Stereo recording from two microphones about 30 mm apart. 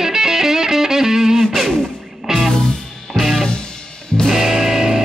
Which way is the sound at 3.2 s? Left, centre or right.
Centre.